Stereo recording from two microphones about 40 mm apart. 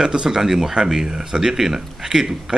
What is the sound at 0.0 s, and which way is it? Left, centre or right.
Speech, centre.